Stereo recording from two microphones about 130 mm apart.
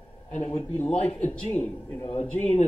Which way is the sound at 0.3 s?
55° left (ahead or behind).